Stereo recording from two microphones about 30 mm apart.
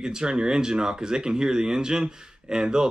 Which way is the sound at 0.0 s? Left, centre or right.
Right.